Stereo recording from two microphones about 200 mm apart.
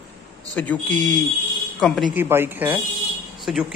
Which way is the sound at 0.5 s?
10° left (ahead or behind).